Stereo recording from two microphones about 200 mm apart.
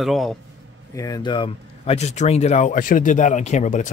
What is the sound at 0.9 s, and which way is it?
Speech, 20° left (ahead or behind).